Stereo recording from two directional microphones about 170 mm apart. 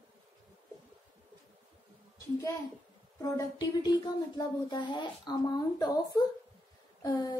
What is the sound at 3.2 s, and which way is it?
Speech, 20° left (ahead or behind).